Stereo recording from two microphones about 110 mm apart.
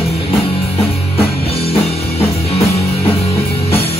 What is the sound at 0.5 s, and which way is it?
Music, 60° left (ahead or behind).